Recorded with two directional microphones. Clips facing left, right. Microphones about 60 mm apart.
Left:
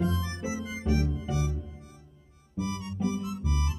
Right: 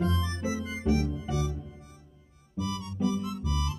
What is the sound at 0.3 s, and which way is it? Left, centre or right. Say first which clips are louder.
Music: right 1 dB; centre.